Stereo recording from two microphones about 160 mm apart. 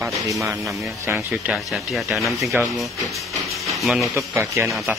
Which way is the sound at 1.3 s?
5° right (ahead or behind).